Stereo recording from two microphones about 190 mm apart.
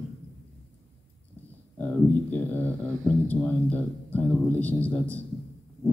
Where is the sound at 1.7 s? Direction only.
10° left (ahead or behind).